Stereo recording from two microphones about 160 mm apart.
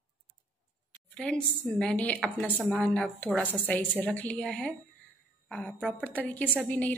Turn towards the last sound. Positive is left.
turn(degrees=10)  # may be behind; listen again after turning